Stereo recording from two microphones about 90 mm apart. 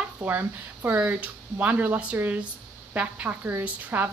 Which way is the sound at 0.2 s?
20° right (ahead or behind).